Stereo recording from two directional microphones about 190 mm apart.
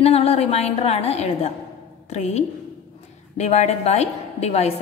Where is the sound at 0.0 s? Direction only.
35° left (ahead or behind).